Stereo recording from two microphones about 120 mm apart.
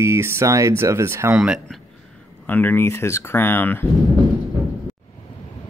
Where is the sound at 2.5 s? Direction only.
15° left (ahead or behind).